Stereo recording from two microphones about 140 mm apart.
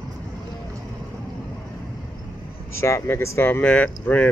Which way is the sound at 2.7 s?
20° left (ahead or behind).